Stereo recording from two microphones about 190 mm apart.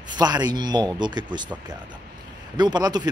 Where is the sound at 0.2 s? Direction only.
20° right (ahead or behind).